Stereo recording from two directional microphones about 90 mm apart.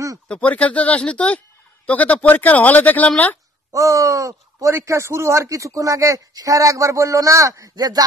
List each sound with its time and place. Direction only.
0.3 s speech: 15° left (ahead or behind)
3.7 s speech: 35° right (ahead or behind)